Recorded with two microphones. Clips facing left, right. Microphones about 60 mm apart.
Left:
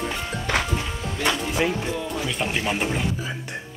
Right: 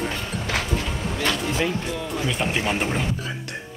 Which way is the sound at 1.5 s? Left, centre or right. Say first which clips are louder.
Left 1 dB; centre.